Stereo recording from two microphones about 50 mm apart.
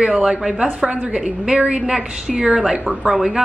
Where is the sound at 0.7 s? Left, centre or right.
Right.